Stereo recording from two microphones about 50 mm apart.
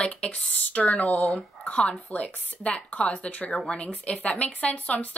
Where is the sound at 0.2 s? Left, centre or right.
Left.